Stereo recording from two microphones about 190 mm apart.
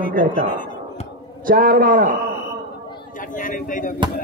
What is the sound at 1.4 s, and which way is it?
Speech, 50° right (ahead or behind).